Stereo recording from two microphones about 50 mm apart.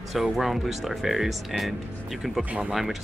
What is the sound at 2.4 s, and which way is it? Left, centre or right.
Speech, right.